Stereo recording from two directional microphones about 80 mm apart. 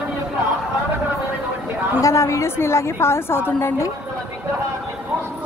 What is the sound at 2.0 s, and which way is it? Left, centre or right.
A woman's voice, left.